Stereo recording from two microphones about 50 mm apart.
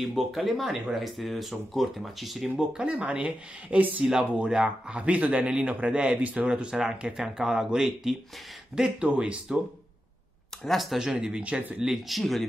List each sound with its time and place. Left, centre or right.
0.0 s speech: centre
2.6 s a man's voice: right
4.0 s speech: centre
4.3 s a man's voice: right
6.4 s a man's voice: centre
10.6 s speech: centre
11.1 s a man's voice: right
11.8 s speech: centre
12.2 s speech: centre